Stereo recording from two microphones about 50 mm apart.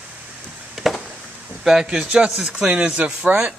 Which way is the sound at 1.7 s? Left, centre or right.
Centre.